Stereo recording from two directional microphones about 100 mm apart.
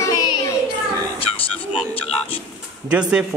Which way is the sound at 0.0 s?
40° left (ahead or behind).